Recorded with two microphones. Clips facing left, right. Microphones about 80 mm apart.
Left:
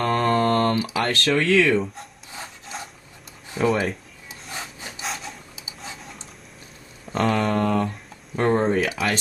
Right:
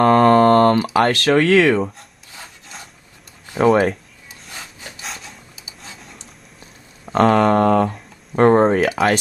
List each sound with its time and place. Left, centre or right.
0.0 s mantra: right
1.1 s speech: right
3.5 s speech: right
5.0 s wood: centre
7.1 s speech: right